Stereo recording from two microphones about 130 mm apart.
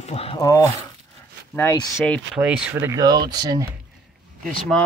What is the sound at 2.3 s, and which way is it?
Speech, 10° right (ahead or behind).